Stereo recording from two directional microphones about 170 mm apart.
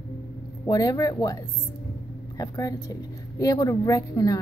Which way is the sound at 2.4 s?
20° left (ahead or behind).